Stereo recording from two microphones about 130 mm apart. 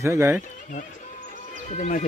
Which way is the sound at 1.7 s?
65° left (ahead or behind).